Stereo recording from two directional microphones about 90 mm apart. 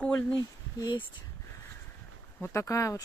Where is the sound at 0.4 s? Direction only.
45° left (ahead or behind).